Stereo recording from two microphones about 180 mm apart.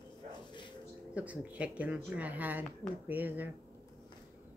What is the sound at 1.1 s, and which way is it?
Speech, 10° right (ahead or behind).